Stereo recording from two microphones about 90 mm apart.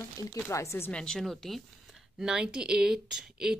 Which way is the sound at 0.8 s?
10° left (ahead or behind).